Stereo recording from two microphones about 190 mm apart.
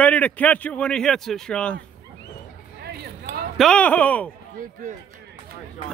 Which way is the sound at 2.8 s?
55° right (ahead or behind).